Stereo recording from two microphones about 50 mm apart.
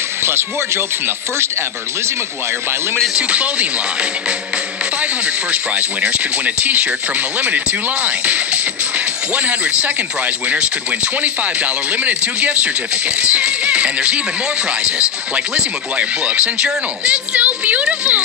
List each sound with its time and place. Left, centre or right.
0.2 s speech: right
3.2 s speech: right
5.0 s speech: right